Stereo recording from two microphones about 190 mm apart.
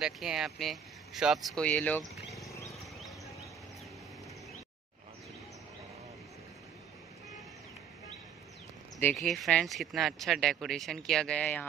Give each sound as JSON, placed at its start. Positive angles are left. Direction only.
{"t": 0.0, "sound": "speech", "side_deg": 0}
{"t": 2.4, "sound": "wild animals", "side_deg": 15}
{"t": 2.7, "sound": "a sound", "side_deg": 0}
{"t": 9.2, "sound": "speech", "side_deg": 0}